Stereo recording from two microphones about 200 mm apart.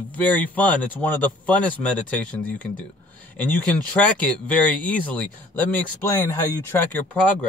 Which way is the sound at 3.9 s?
5° left (ahead or behind).